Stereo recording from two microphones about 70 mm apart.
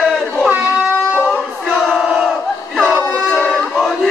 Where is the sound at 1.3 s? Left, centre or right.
Centre.